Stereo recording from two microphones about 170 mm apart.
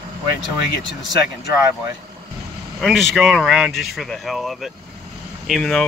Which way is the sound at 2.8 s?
Centre (ahead or behind).